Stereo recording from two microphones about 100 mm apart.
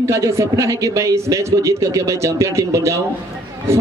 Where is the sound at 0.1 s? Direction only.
30° right (ahead or behind).